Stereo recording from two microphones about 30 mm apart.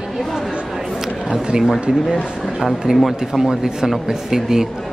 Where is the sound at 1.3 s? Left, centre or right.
Right.